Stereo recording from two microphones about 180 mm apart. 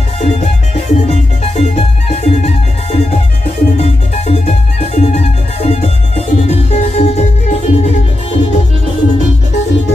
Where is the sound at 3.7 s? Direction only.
35° left (ahead or behind).